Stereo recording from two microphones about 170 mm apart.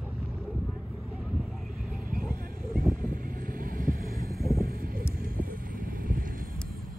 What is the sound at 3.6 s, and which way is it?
Vehicle, 55° right (ahead or behind).